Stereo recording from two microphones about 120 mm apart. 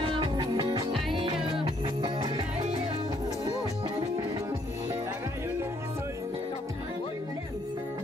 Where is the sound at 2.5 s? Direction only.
60° right (ahead or behind).